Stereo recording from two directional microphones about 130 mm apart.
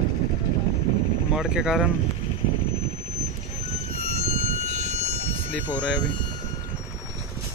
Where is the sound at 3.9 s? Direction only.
50° left (ahead or behind).